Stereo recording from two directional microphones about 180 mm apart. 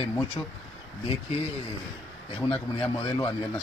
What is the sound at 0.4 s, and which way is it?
Speech, 15° left (ahead or behind).